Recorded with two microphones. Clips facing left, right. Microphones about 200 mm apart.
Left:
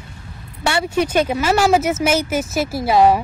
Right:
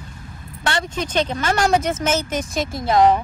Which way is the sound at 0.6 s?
10° left (ahead or behind).